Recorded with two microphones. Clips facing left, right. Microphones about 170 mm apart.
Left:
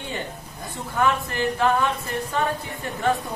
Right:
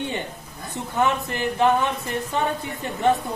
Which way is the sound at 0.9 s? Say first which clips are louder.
Even; 20° right (ahead or behind).